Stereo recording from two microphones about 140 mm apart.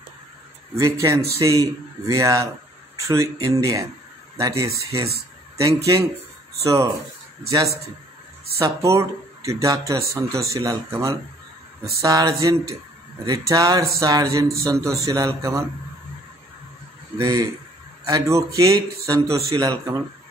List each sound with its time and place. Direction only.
0.7 s speech: 20° right (ahead or behind)
8.5 s speech: 20° right (ahead or behind)
17.2 s speech: 25° right (ahead or behind)